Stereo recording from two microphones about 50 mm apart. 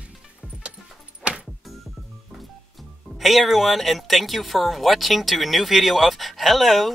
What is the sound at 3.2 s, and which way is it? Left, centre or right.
Speech, centre.